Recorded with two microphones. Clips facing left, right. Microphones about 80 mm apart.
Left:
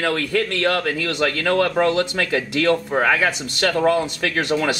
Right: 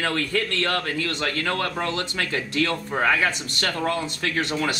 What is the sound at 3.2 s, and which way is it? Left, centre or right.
Speech, left.